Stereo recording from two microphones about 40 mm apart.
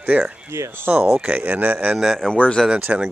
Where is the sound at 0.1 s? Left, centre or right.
Right.